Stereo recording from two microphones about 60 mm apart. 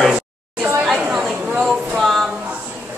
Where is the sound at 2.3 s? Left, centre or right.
Right.